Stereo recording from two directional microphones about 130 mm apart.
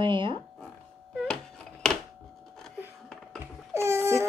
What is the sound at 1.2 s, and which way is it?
Music, 5° left (ahead or behind).